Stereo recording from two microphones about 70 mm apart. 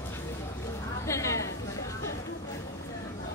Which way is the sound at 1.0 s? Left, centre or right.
Left.